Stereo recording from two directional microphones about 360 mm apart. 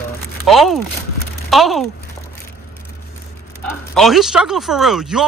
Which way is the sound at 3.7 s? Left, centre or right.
Centre.